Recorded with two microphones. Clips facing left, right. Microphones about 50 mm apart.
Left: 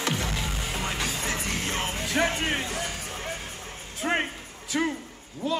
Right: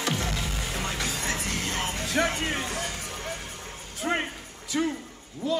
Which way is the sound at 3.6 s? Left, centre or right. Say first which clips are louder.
Left 1 dB; left.